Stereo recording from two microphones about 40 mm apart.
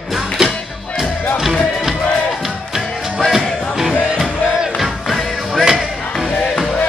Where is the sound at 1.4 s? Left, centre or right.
Centre.